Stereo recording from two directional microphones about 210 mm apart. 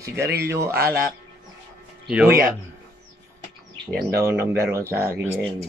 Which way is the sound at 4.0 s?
45° right (ahead or behind).